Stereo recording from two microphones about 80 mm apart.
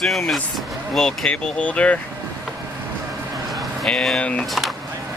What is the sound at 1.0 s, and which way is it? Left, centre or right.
Speech, centre.